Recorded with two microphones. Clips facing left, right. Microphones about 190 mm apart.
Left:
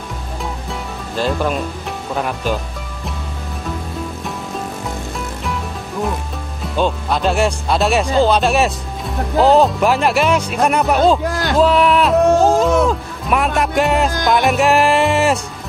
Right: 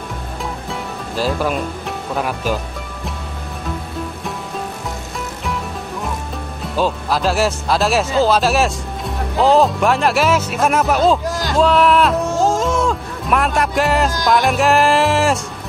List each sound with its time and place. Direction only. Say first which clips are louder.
0.7 s music: right 1 dB; 5° right (ahead or behind)
2.1 s speech: even; centre (ahead or behind)
6.6 s speech: left 1 dB; centre (ahead or behind)
11.2 s speech: left 2 dB; 60° left (ahead or behind)
11.5 s speech: even; centre (ahead or behind)